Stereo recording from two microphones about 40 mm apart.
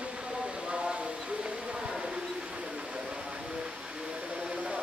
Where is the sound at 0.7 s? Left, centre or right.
Right.